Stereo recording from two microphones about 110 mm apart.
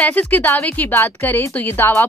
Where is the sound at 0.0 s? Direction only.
15° left (ahead or behind).